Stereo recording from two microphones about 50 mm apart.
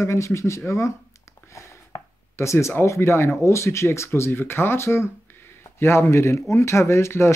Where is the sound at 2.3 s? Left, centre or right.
Left.